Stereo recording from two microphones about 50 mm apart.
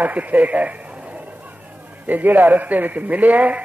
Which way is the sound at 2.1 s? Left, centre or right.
Right.